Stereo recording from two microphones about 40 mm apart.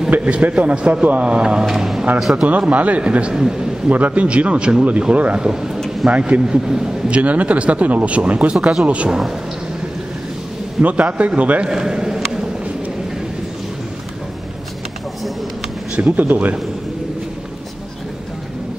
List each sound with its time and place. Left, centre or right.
0.2 s speech: right
1.7 s a man's voice: centre
2.7 s speech: right
3.0 s a man's voice: right
3.3 s a man's voice: centre
3.9 s speech: right
5.4 s a man's voice: centre
6.0 s speech: right
6.4 s a man's voice: centre
7.1 s speech: right
10.8 s speech: right
11.6 s a man's voice: centre
16.0 s speech: right